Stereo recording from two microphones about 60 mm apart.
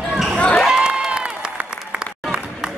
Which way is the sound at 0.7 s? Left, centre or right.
Centre.